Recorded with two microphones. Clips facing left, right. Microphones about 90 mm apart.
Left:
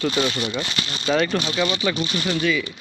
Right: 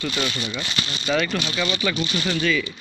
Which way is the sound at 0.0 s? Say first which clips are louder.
Left 4 dB; 30° left (ahead or behind).